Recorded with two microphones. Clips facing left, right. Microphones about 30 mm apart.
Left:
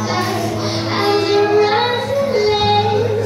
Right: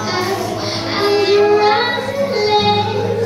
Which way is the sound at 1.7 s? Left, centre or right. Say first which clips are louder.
Right 1 dB; centre.